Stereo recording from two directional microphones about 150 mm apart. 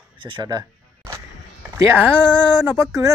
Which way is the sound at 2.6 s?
15° right (ahead or behind).